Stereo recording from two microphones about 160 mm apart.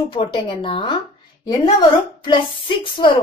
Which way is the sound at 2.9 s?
30° left (ahead or behind).